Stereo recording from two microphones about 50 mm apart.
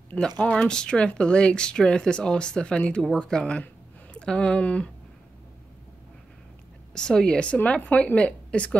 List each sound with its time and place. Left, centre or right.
0.4 s speech: centre
6.9 s speech: centre